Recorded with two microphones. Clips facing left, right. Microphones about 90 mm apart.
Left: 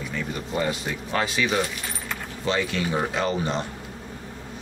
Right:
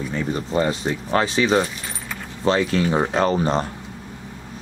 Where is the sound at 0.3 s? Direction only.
35° right (ahead or behind).